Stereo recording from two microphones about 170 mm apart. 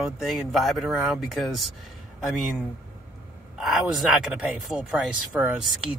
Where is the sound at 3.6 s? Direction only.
Centre (ahead or behind).